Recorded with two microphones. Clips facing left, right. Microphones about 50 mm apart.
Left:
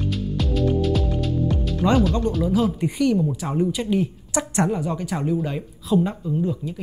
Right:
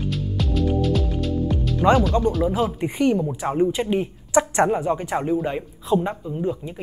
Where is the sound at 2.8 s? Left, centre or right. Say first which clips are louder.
Even; right.